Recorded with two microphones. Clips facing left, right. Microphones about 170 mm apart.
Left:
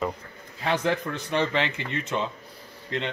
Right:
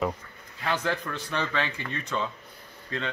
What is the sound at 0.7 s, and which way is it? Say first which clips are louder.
A man's voice: left 4 dB; 20° left (ahead or behind).